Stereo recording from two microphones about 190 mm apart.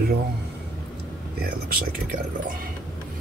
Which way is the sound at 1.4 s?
50° right (ahead or behind).